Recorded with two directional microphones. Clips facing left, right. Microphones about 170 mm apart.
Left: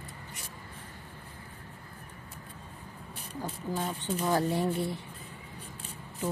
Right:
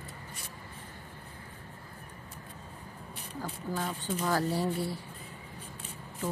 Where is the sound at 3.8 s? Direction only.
20° left (ahead or behind).